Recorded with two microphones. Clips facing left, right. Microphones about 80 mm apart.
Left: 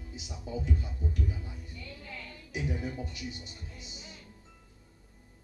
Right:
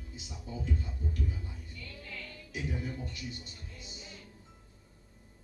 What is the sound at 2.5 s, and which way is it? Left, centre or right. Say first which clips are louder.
Speech: left 3 dB; left.